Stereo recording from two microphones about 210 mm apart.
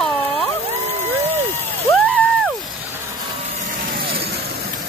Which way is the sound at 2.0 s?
5° left (ahead or behind).